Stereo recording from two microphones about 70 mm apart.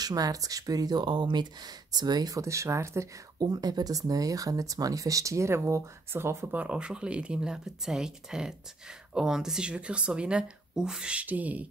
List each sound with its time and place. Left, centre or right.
0.0 s speech: right
3.3 s speech: right
6.5 s speech: centre